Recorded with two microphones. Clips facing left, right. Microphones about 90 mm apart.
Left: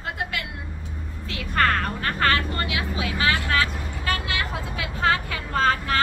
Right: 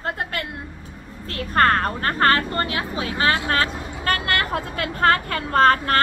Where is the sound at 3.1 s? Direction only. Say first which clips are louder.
Right 3 dB; 25° right (ahead or behind).